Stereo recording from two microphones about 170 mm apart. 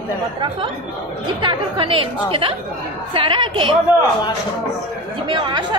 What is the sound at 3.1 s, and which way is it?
Speech, 30° right (ahead or behind).